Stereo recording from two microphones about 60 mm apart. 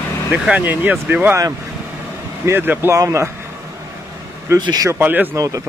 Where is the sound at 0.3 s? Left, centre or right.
Right.